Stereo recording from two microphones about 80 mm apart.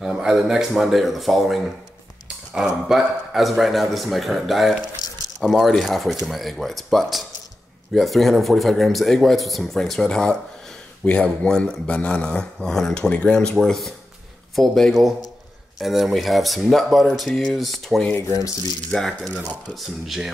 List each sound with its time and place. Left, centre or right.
0.0 s a man's voice: centre